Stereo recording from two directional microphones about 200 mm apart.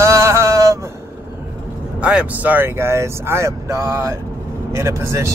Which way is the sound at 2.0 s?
5° right (ahead or behind).